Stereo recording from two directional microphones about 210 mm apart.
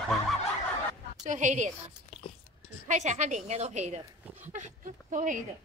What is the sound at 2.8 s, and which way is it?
A woman's voice, 35° right (ahead or behind).